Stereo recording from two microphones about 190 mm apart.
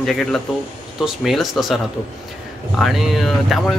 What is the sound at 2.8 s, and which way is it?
Speech, centre (ahead or behind).